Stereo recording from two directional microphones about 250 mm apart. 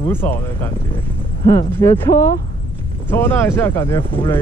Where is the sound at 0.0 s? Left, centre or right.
Centre.